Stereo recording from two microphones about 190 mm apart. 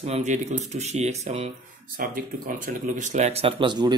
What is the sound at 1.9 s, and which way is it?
Speech, 50° right (ahead or behind).